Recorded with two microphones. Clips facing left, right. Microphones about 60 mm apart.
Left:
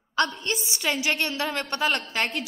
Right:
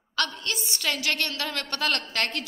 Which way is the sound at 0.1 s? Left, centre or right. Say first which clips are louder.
Left 4 dB; centre.